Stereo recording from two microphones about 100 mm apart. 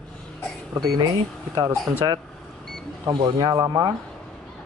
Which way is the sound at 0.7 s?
45° right (ahead or behind).